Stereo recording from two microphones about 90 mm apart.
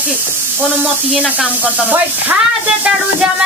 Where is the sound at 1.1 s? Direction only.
15° right (ahead or behind).